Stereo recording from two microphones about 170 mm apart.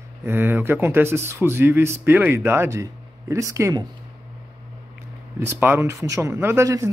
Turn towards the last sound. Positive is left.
turn(degrees=-15)  # may be behind; listen again after turning